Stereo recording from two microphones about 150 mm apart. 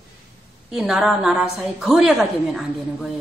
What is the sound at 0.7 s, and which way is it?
A woman's voice, 5° right (ahead or behind).